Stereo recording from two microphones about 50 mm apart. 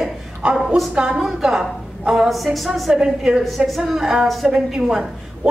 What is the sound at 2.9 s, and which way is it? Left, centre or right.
Speech, centre.